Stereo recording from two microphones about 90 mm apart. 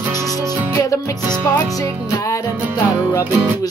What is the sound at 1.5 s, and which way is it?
Music, 35° left (ahead or behind).